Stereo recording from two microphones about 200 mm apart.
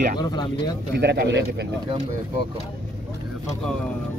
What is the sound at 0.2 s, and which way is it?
Speech, 20° left (ahead or behind).